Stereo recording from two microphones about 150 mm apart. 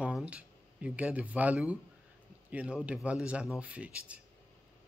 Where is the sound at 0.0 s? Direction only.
10° right (ahead or behind).